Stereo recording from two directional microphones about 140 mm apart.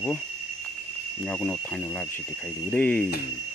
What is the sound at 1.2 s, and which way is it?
Speech, 5° left (ahead or behind).